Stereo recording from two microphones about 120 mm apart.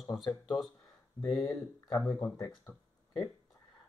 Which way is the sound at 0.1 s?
Centre (ahead or behind).